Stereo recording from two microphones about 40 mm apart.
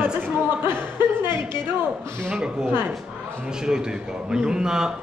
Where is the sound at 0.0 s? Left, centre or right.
Right.